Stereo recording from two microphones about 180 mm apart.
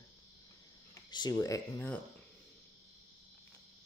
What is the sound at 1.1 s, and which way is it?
Speech, 20° left (ahead or behind).